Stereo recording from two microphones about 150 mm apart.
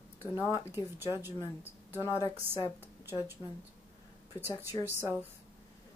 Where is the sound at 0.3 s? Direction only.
25° left (ahead or behind).